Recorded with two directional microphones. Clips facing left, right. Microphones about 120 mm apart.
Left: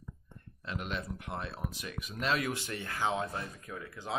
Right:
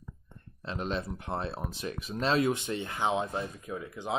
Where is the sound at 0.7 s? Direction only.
30° right (ahead or behind).